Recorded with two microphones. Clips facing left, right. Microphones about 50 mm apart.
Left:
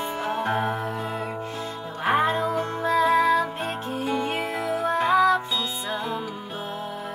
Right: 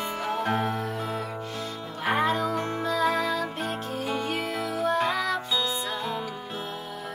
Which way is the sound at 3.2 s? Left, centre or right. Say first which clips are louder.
Left 6 dB; left.